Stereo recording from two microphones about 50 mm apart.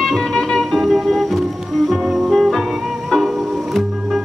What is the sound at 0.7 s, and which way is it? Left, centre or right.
Music, centre.